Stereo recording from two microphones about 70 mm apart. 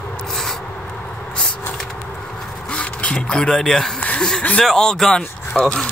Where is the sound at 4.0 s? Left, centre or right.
Centre.